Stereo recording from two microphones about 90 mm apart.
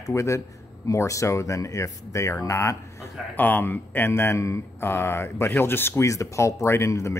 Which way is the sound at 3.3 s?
20° left (ahead or behind).